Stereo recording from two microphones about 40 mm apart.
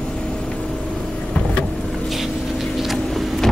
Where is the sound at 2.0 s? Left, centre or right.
Centre.